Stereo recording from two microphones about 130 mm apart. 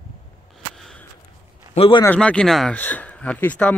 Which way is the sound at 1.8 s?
40° left (ahead or behind).